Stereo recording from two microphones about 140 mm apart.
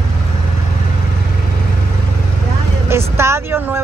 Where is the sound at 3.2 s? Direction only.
20° right (ahead or behind).